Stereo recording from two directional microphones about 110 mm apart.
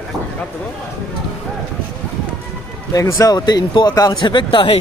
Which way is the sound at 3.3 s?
40° left (ahead or behind).